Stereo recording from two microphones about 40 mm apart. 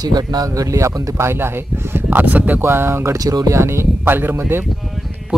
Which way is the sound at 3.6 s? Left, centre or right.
Right.